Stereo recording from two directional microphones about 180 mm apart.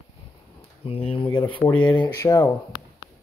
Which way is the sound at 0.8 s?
30° left (ahead or behind).